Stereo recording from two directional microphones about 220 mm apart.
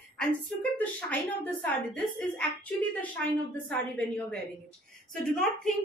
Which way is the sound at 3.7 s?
5° left (ahead or behind).